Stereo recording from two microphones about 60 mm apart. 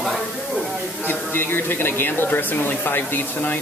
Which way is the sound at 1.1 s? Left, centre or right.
Left.